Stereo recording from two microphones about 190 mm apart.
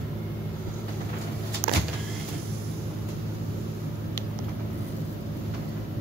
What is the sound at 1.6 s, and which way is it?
Vehicle, 65° right (ahead or behind).